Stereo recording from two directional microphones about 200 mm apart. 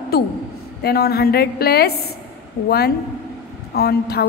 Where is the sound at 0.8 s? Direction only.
50° left (ahead or behind).